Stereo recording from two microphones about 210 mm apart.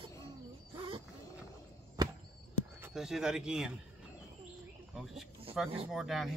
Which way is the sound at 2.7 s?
5° right (ahead or behind).